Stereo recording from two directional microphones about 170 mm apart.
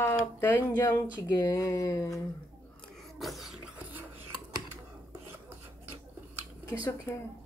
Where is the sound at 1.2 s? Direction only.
20° left (ahead or behind).